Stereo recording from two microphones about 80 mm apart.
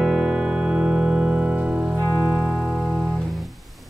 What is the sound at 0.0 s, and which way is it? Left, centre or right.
Music, centre.